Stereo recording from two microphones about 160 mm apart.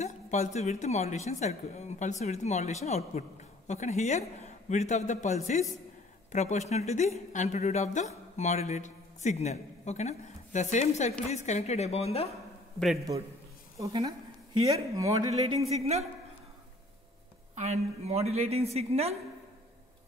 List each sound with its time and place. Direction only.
0.0 s a man's voice: 45° left (ahead or behind)
12.7 s a man's voice: centre (ahead or behind)
15.0 s speech: 20° right (ahead or behind)
15.7 s speech: 40° right (ahead or behind)
17.6 s speech: 40° right (ahead or behind)